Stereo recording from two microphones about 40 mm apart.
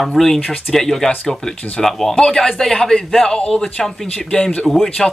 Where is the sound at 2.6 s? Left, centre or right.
Centre.